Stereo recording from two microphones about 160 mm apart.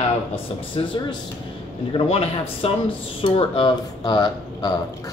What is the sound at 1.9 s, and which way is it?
A man's voice, 35° left (ahead or behind).